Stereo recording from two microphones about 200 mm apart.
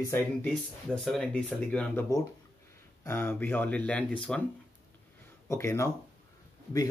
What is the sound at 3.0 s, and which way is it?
Speech, 10° left (ahead or behind).